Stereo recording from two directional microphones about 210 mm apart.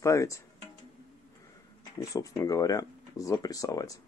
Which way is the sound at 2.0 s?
15° left (ahead or behind).